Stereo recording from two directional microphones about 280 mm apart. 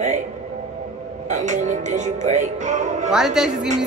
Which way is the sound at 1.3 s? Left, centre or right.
Right.